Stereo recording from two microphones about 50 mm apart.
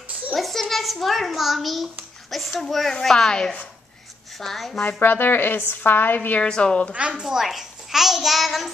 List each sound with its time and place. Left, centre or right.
0.3 s a child's voice: centre
5.0 s a woman's voice: left
6.4 s a woman's voice: centre
6.9 s a child's voice: right; by 8.6 s centre